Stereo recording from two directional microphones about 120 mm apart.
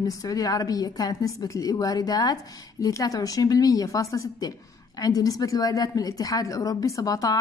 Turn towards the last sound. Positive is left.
turn(degrees=30)  # may be behind; listen again after turning